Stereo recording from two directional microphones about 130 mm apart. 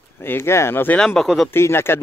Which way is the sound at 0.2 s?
20° left (ahead or behind).